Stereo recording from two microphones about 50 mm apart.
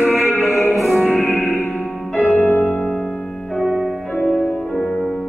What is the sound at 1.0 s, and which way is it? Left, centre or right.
Music, left.